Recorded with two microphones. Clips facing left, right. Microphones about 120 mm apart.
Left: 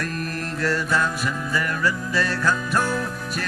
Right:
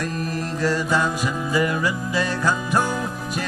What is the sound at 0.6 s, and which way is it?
Music, 10° right (ahead or behind).